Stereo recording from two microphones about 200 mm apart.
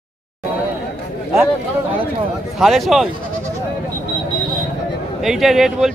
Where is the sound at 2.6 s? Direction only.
Centre (ahead or behind).